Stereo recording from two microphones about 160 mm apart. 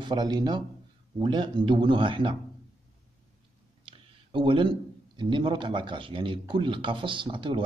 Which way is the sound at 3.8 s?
30° right (ahead or behind).